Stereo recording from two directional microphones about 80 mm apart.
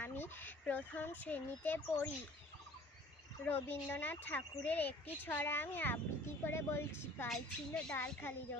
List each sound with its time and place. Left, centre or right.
0.0 s a sound: left
1.2 s speech: left
3.4 s speech: left
7.2 s a woman's voice: centre